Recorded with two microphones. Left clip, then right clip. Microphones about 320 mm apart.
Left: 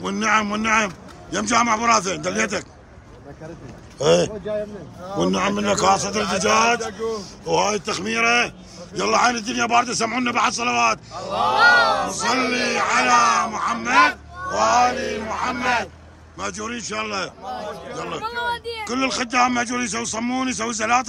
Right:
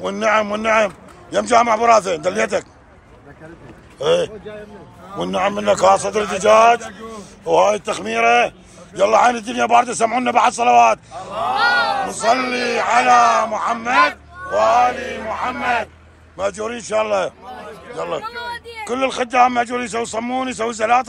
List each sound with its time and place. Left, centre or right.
0.0 s a man's voice: centre
4.0 s speech: centre
5.2 s a man's voice: centre
11.5 s speech: left
12.1 s a man's voice: centre
18.2 s speech: centre
18.8 s a man's voice: centre